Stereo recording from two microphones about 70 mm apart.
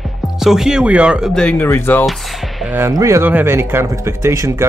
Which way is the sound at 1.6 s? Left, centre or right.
Left.